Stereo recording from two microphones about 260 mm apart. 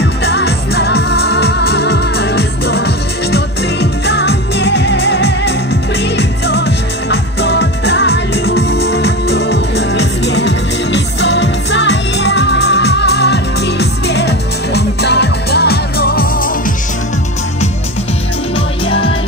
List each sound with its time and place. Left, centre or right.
0.0 s music: left
18.9 s music: left